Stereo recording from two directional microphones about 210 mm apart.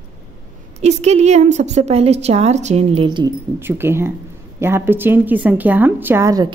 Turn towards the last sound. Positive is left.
turn(degrees=-15)  # may be behind; listen again after turning